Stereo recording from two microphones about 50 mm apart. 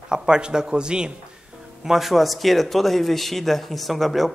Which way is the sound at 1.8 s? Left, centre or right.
Centre.